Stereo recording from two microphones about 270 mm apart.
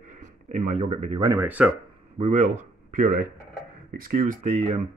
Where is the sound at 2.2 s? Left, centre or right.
Right.